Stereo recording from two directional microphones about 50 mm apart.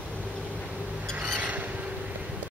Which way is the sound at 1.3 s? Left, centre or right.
Right.